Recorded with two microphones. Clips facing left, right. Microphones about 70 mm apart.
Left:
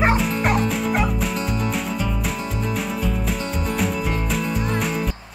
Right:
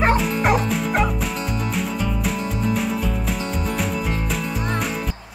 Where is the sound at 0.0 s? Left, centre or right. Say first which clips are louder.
Right 1 dB; centre.